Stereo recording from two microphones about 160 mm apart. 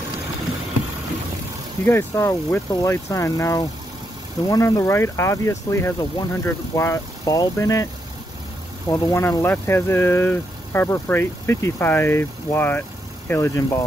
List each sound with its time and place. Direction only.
1.9 s speech: 15° left (ahead or behind)